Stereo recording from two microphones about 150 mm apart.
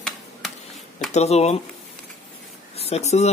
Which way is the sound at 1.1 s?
45° left (ahead or behind).